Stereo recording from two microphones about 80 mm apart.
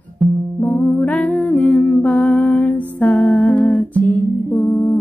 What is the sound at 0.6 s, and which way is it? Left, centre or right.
Music, centre.